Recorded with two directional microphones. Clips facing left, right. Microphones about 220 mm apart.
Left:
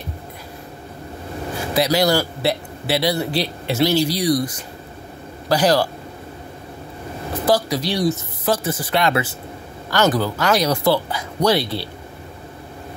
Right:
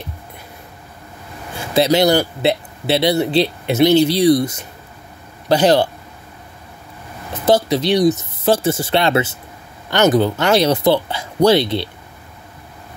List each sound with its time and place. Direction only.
1.7 s speech: 25° right (ahead or behind)
7.4 s speech: 25° right (ahead or behind)